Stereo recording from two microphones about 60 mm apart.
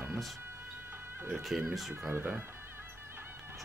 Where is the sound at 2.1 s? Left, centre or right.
Right.